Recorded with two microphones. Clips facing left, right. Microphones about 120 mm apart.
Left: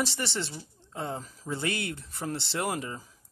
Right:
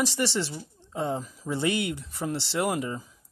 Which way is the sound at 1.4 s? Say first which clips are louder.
Right 5 dB; 15° right (ahead or behind).